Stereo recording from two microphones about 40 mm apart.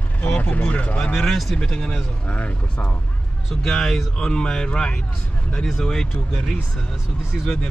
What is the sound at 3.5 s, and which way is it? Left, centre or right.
Speech, centre.